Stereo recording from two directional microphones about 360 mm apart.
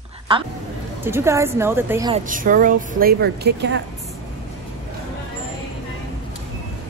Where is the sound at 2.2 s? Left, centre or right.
Right.